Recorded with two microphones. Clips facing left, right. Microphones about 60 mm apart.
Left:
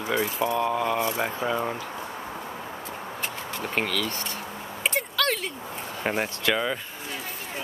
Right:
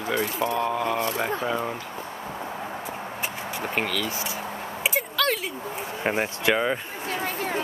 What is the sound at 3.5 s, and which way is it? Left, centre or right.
Speech, centre.